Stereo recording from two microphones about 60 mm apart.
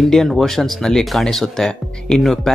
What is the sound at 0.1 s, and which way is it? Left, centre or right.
Speech, centre.